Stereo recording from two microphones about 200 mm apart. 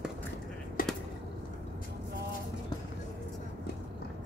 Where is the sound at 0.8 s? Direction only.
45° left (ahead or behind).